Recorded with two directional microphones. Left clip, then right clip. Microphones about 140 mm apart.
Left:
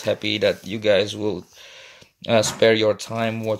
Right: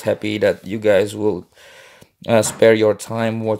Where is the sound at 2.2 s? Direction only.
45° right (ahead or behind).